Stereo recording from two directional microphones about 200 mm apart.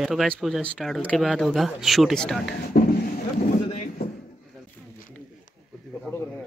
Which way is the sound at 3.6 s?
30° left (ahead or behind).